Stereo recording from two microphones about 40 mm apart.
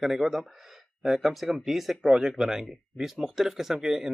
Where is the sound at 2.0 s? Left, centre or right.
Centre.